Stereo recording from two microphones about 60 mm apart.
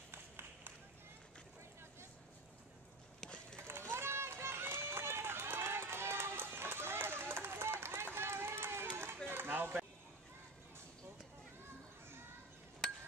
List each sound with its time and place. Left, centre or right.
0.1 s run: right
3.5 s run: right